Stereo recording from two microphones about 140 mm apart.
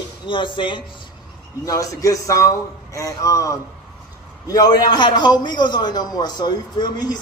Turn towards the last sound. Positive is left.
turn(degrees=30)  # may be behind; listen again after turning